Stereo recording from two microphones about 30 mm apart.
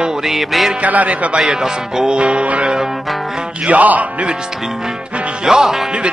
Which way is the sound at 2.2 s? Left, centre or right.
Right.